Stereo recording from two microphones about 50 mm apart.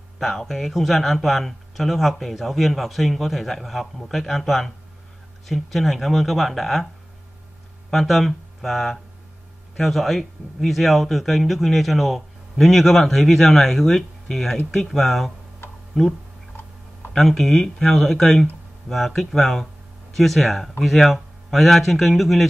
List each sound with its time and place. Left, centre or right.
0.2 s speech: centre
7.9 s speech: centre